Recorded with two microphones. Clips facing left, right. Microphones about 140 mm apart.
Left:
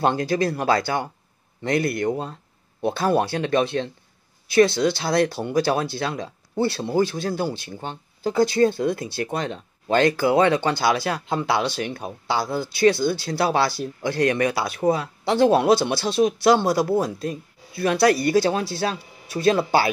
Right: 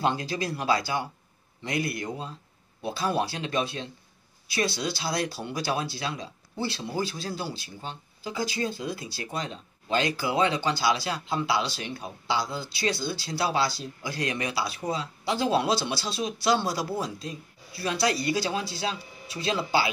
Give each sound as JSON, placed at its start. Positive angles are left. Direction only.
{"t": 0.0, "sound": "speech", "side_deg": 55}